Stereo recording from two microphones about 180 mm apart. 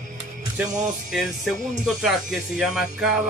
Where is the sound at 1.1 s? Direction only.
5° right (ahead or behind).